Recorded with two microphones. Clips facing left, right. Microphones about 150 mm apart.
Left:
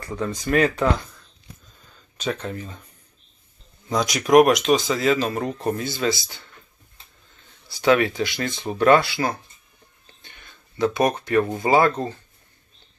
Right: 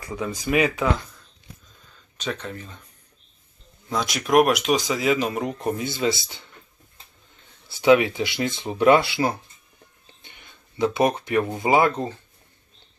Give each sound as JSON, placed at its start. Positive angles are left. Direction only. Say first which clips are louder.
{"t": 0.0, "sound": "speech", "louder": "left 1 dB", "side_deg": -10}
{"t": 2.1, "sound": "speech", "louder": "left 3 dB", "side_deg": 0}
{"t": 3.9, "sound": "speech", "louder": "left 4 dB", "side_deg": 0}
{"t": 7.8, "sound": "speech", "louder": "right 2 dB", "side_deg": -15}
{"t": 10.2, "sound": "a sound", "louder": "left 1 dB", "side_deg": -20}
{"t": 11.4, "sound": "speech", "louder": "even", "side_deg": -15}